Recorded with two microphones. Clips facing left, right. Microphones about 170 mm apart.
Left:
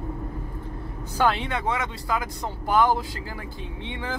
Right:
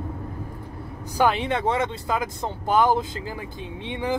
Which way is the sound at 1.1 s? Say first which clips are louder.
Right 2 dB; 15° right (ahead or behind).